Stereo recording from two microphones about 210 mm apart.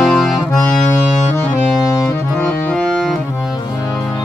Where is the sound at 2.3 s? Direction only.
5° left (ahead or behind).